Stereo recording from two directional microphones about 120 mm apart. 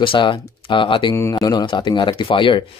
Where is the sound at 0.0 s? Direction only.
45° left (ahead or behind).